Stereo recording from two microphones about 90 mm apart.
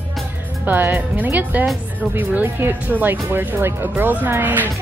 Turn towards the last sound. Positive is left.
turn(degrees=-20)  # may be behind; listen again after turning